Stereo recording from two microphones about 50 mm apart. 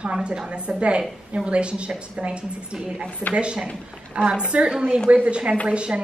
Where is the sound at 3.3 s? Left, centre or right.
Right.